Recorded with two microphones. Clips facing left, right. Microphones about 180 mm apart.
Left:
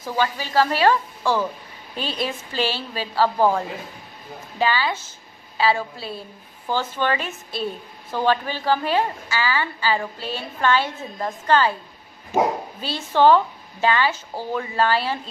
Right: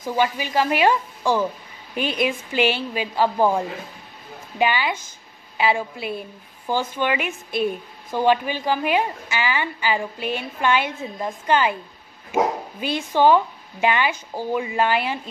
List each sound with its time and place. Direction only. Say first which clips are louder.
0.0 s a woman's voice: right 2 dB; 15° right (ahead or behind)
12.8 s a woman's voice: left 1 dB; 15° right (ahead or behind)